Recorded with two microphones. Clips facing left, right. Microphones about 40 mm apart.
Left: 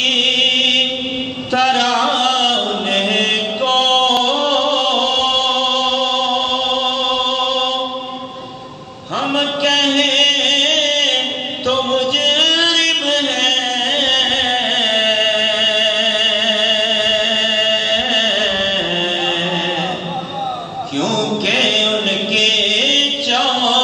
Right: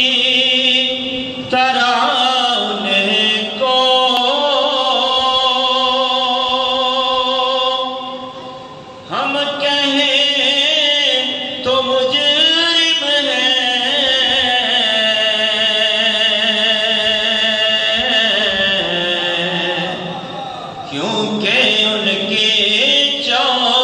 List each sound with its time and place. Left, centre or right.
0.0 s chant: right
1.5 s a sound: right
9.1 s chant: centre
21.0 s music: centre